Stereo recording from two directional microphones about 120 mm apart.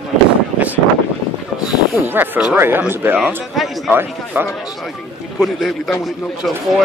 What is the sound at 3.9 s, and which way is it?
Speech, 15° right (ahead or behind).